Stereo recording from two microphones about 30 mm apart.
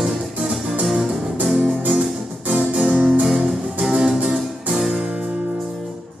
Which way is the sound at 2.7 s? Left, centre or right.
Right.